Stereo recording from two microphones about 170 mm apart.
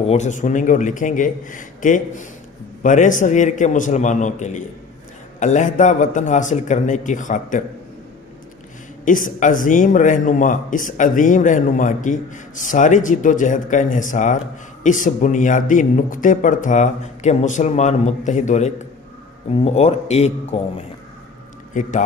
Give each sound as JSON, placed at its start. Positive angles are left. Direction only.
{"t": 0.0, "sound": "speech", "side_deg": 40}
{"t": 9.0, "sound": "speech", "side_deg": 50}
{"t": 21.7, "sound": "speech", "side_deg": 50}